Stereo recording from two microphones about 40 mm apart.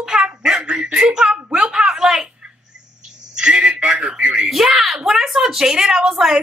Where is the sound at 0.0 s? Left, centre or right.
Centre.